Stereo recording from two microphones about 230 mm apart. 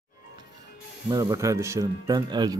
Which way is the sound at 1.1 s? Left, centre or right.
Centre.